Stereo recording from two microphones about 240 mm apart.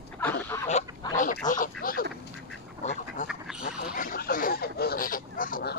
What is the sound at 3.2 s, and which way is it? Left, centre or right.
Duck, centre.